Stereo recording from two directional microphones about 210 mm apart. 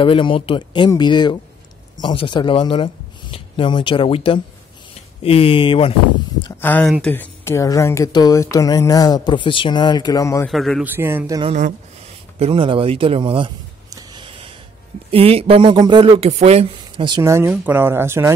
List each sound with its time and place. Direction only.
0.0 s speech: 25° left (ahead or behind)
6.6 s speech: 5° left (ahead or behind)
10.5 s a man's voice: centre (ahead or behind); by 13.5 s 25° right (ahead or behind)
13.9 s a sound: 20° right (ahead or behind)
15.0 s speech: 25° right (ahead or behind); by 18.3 s 10° right (ahead or behind)